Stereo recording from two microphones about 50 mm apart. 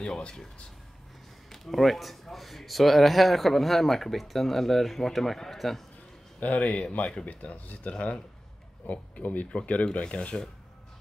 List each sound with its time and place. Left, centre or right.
0.0 s speech: centre
1.5 s speech: centre
6.4 s speech: left